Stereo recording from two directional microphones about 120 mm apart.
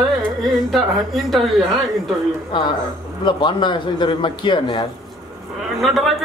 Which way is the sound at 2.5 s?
40° left (ahead or behind).